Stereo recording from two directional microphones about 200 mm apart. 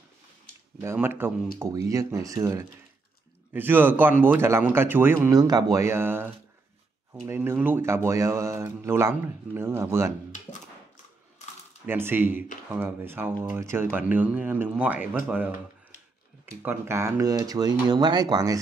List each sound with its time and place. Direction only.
0.7 s a man's voice: 10° right (ahead or behind)
11.8 s a man's voice: 10° right (ahead or behind)